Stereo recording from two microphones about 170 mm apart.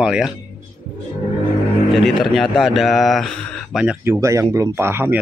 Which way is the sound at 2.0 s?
Centre (ahead or behind).